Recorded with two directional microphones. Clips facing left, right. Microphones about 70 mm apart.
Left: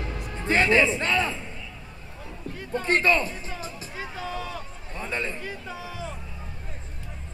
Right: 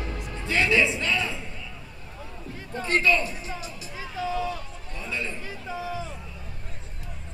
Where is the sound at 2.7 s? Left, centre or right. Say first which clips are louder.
Left 1 dB; left.